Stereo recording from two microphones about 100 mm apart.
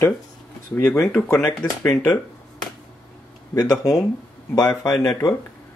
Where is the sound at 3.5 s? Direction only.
35° left (ahead or behind).